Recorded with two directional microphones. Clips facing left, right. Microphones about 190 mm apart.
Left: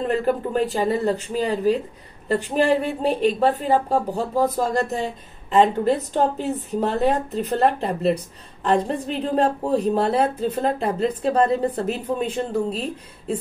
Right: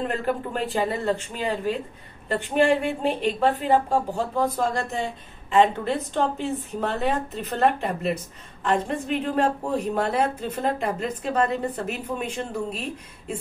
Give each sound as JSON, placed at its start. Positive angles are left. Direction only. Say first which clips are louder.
{"t": 0.2, "sound": "a woman's voice", "louder": "left 5 dB", "side_deg": 40}